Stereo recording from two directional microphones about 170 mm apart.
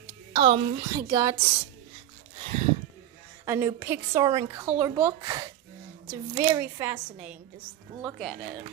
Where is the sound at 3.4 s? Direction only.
15° right (ahead or behind).